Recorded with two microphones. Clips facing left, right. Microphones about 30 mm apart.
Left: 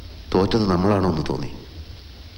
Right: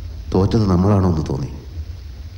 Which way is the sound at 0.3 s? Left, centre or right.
Left.